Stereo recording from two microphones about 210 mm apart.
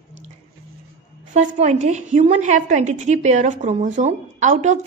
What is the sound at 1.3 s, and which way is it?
A woman's voice, 35° right (ahead or behind).